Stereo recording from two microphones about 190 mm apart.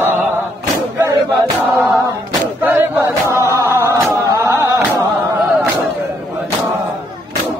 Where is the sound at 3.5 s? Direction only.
15° right (ahead or behind).